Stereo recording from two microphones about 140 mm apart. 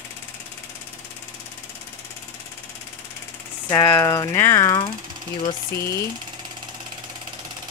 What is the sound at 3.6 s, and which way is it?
Speech, 20° left (ahead or behind).